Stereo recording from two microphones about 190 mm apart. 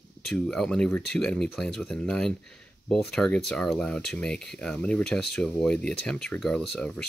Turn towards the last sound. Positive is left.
turn(degrees=5)  # may be behind; listen again after turning